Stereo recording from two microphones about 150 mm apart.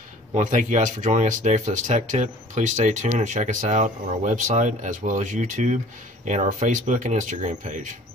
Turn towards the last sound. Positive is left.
turn(degrees=-55)  # may be behind; listen again after turning